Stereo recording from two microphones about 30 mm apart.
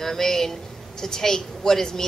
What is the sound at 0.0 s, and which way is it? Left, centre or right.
Speech, centre.